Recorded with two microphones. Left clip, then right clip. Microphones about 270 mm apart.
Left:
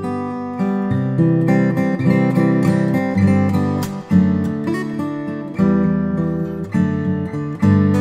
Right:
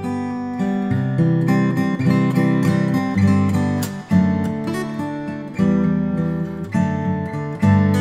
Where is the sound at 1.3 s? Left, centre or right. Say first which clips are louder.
Left 3 dB; left.